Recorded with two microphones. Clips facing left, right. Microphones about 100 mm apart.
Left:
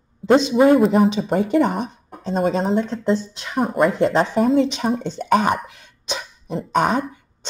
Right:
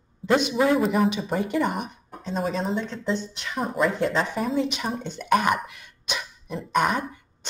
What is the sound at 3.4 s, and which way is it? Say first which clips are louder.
Speech: left 6 dB; 30° left (ahead or behind).